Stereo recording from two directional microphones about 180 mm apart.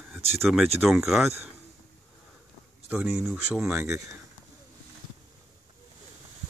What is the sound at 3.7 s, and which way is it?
Speech, 15° right (ahead or behind).